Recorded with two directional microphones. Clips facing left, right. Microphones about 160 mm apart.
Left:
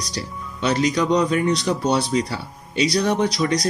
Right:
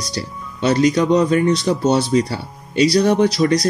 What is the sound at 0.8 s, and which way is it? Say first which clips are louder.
Speech: right 4 dB; 45° right (ahead or behind).